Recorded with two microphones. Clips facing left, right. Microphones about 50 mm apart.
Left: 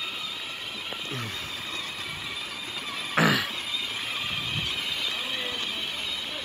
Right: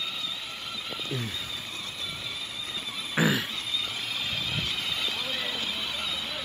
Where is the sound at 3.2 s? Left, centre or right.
Left.